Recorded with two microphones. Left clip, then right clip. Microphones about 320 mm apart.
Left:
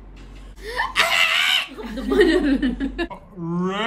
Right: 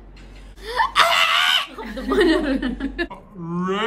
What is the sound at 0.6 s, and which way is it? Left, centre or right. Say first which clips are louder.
Laughter: right 3 dB; centre.